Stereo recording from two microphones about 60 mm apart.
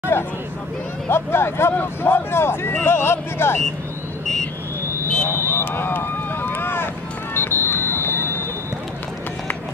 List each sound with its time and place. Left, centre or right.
0.1 s speech: left
5.3 s vehicle: left
7.3 s music: left
7.9 s a sound: left